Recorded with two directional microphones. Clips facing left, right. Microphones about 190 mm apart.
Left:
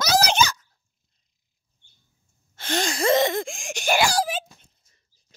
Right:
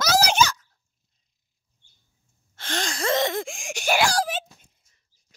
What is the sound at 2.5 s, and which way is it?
Gasp, 5° left (ahead or behind).